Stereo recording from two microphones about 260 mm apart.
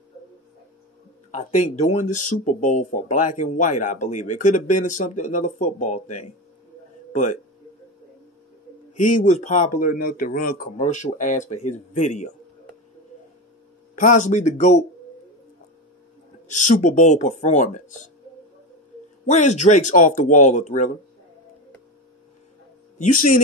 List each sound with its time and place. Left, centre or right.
1.3 s speech: left
7.1 s a sound: left
8.9 s speech: left
13.9 s speech: left
16.4 s speech: left
19.2 s speech: left
22.9 s speech: left